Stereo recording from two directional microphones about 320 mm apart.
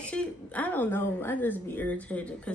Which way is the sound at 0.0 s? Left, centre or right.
Centre.